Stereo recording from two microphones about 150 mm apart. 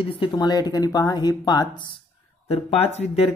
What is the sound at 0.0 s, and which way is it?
Speech, 35° left (ahead or behind).